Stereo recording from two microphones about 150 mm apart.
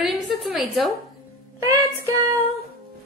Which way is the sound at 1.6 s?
20° right (ahead or behind).